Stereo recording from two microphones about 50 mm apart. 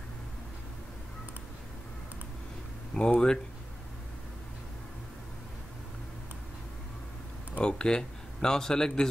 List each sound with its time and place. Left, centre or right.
2.9 s speech: centre
7.6 s speech: centre